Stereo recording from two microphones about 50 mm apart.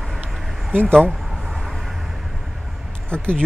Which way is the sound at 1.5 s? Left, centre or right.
Centre.